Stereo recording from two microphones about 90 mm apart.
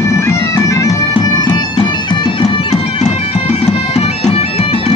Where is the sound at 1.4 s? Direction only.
50° left (ahead or behind); by 2.9 s 65° left (ahead or behind).